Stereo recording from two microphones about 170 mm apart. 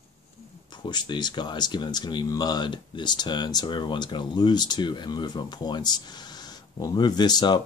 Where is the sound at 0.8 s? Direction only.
25° left (ahead or behind).